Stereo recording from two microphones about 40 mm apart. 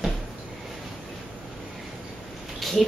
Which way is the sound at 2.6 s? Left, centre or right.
Centre.